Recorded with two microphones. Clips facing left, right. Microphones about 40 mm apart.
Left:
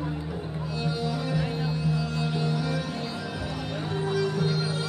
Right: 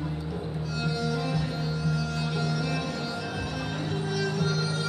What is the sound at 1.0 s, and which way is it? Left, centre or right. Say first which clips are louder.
Music: left 1 dB; centre.